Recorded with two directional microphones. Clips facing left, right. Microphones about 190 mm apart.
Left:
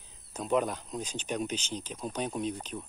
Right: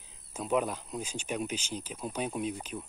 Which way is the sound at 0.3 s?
5° right (ahead or behind).